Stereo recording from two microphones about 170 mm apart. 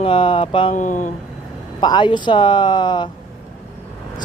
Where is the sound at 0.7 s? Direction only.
50° left (ahead or behind).